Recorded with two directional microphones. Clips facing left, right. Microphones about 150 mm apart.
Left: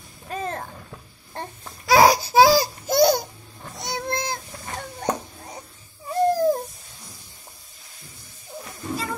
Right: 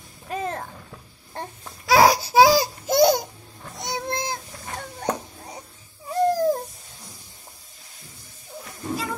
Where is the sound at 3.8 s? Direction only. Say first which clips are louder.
Even; 20° right (ahead or behind).